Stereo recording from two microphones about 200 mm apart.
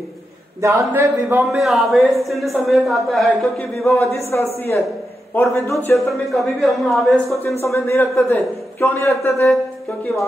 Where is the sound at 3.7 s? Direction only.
10° left (ahead or behind).